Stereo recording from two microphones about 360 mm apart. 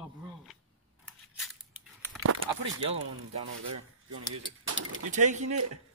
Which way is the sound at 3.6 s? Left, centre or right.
Right.